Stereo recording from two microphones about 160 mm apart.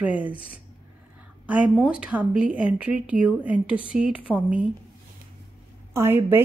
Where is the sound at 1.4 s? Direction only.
10° right (ahead or behind).